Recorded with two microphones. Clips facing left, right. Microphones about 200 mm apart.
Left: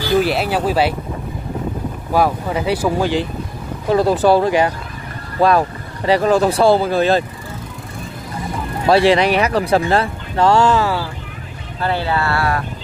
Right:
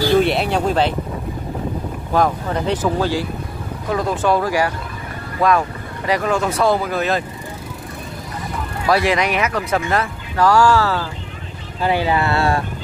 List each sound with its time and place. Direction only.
0.2 s speech: 5° left (ahead or behind)
2.1 s speech: 5° left (ahead or behind)
3.9 s speech: 35° left (ahead or behind)
5.4 s speech: 35° left (ahead or behind)
8.8 s speech: 30° left (ahead or behind)
11.8 s speech: 15° right (ahead or behind)